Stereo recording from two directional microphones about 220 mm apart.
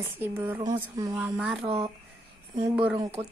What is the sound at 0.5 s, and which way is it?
Speech, 20° right (ahead or behind).